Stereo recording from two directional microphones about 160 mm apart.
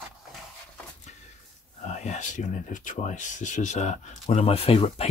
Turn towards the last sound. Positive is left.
turn(degrees=35)  # may be behind; listen again after turning